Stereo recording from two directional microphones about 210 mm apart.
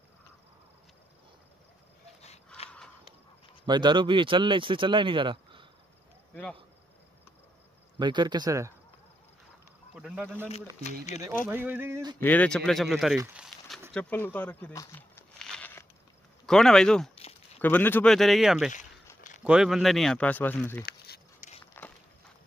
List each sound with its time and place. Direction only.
2.2 s a sound: 30° left (ahead or behind)
3.6 s speech: 20° right (ahead or behind)
8.0 s speech: 20° right (ahead or behind)
9.9 s speech: 5° right (ahead or behind)
12.2 s speech: 5° left (ahead or behind)
13.4 s a sound: centre (ahead or behind)
16.4 s speech: centre (ahead or behind)
20.8 s a sound: 50° left (ahead or behind)
21.8 s walk: 10° left (ahead or behind)